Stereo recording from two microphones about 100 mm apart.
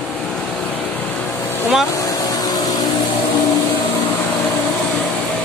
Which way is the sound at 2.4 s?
40° left (ahead or behind).